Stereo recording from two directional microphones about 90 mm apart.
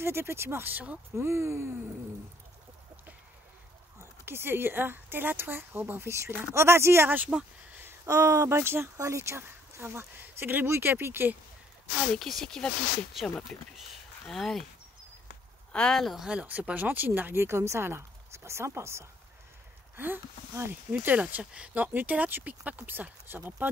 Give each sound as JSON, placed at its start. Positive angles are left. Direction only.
{"t": 0.0, "sound": "speech", "side_deg": -30}
{"t": 1.1, "sound": "speech", "side_deg": -30}
{"t": 4.0, "sound": "speech", "side_deg": -25}
{"t": 7.8, "sound": "speech", "side_deg": -30}
{"t": 12.1, "sound": "speech", "side_deg": 5}
{"t": 15.7, "sound": "speech", "side_deg": 5}
{"t": 16.3, "sound": "speech", "side_deg": -15}